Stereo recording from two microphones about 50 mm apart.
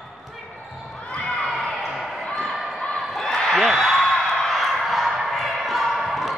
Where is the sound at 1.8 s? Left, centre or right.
Centre.